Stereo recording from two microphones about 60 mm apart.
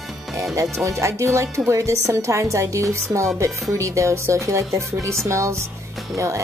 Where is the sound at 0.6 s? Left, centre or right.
Right.